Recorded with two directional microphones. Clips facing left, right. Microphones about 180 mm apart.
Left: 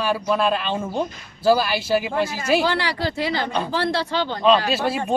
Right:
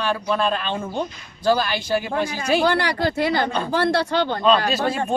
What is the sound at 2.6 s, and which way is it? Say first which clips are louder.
Speech: right 2 dB; 50° right (ahead or behind).